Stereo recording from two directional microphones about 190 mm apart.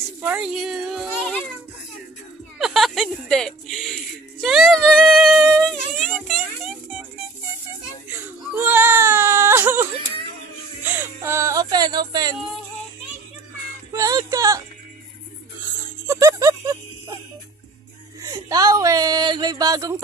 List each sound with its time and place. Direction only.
0.2 s speech: 5° right (ahead or behind)
2.6 s music: centre (ahead or behind)
8.5 s baby cry: 10° right (ahead or behind)
10.8 s music: 10° right (ahead or behind)
12.1 s speech: 20° right (ahead or behind)
13.9 s music: 20° right (ahead or behind)
16.1 s music: 15° right (ahead or behind)
18.2 s a sound: 20° right (ahead or behind)